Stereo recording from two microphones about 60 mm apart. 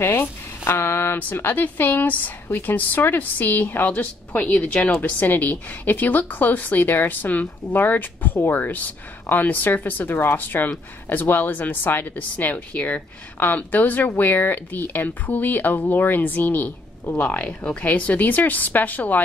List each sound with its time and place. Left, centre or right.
0.0 s a woman's voice: left
17.2 s a woman's voice: centre